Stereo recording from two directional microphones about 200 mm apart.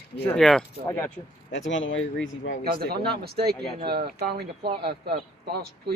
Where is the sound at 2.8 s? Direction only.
50° right (ahead or behind).